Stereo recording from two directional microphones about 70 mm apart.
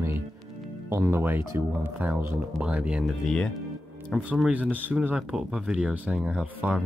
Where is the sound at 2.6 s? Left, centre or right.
Centre.